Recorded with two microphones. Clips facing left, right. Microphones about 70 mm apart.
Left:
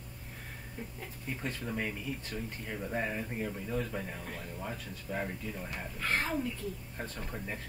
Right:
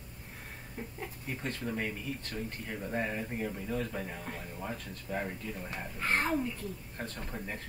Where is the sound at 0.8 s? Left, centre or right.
Right.